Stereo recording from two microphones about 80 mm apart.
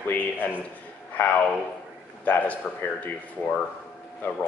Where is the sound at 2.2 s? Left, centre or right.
Centre.